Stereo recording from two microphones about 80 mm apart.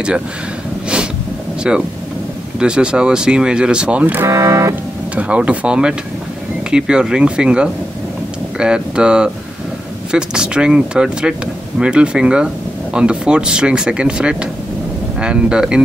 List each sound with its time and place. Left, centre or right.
1.6 s speech: centre
4.3 s speech: right
5.1 s speech: centre